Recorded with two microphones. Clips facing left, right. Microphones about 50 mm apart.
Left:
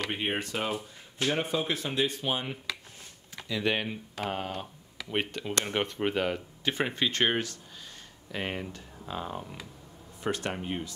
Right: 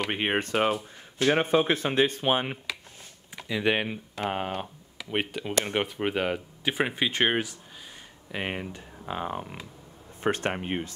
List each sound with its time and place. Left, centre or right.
0.1 s speech: right
3.4 s speech: centre
4.9 s speech: centre; by 10.9 s right